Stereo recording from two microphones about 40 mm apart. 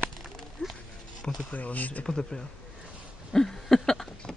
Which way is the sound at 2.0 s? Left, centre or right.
Centre.